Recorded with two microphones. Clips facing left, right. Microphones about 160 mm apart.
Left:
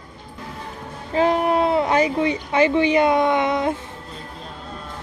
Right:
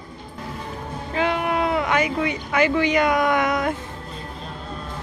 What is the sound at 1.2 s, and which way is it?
Speech, 35° left (ahead or behind).